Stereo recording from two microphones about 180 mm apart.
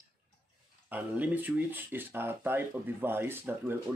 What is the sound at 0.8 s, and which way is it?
Speech, 10° right (ahead or behind).